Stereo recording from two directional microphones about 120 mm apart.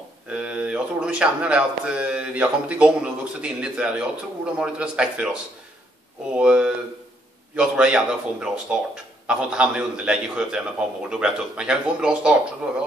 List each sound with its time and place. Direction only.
0.3 s speech: 10° right (ahead or behind)